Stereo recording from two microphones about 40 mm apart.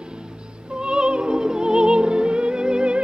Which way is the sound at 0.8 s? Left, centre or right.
Right.